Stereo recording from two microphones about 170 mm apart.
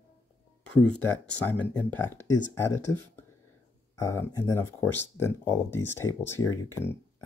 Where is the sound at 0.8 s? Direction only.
10° left (ahead or behind).